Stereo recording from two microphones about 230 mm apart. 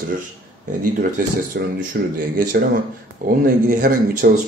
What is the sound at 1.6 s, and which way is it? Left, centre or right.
Speech, right.